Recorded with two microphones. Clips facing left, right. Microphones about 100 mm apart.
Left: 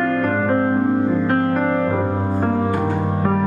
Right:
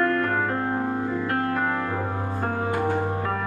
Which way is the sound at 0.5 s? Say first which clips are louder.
Left 8 dB; 40° left (ahead or behind).